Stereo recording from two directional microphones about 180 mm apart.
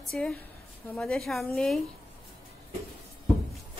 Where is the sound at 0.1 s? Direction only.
5° left (ahead or behind).